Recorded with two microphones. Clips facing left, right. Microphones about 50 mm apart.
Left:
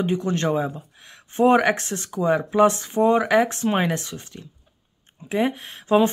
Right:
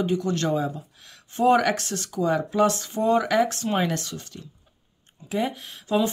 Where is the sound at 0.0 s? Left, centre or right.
Left.